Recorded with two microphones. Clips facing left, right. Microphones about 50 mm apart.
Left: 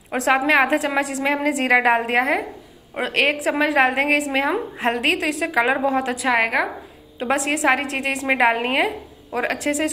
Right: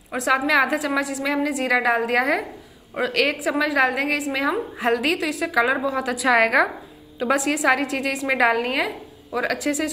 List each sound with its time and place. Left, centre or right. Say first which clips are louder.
0.1 s a woman's voice: left 2 dB; left
6.2 s a woman's voice: right 4 dB; centre
7.2 s a woman's voice: even; left